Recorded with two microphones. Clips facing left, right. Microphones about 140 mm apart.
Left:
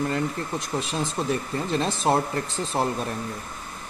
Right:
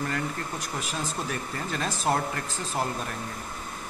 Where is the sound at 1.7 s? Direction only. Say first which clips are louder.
Left 4 dB; 25° left (ahead or behind).